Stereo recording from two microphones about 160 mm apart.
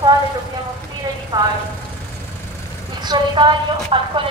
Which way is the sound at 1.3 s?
20° right (ahead or behind).